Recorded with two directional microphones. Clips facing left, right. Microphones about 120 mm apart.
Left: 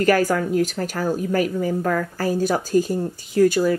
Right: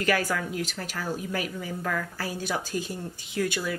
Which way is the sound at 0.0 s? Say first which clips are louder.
Left 8 dB; 45° left (ahead or behind).